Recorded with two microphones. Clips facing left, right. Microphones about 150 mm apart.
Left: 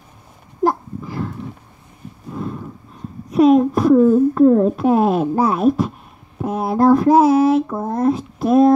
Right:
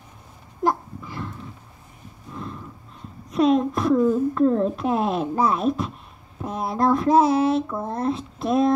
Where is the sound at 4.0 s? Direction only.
35° left (ahead or behind).